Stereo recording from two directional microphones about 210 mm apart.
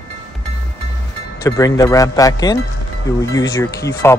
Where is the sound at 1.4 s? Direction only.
15° left (ahead or behind).